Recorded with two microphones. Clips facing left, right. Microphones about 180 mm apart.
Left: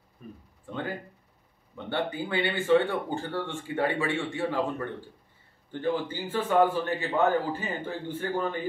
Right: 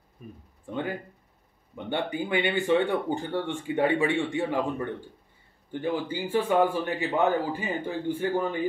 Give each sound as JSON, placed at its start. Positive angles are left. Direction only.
{"t": 0.2, "sound": "speech", "side_deg": -10}